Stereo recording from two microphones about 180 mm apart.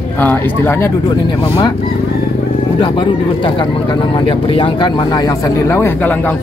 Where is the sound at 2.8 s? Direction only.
25° left (ahead or behind).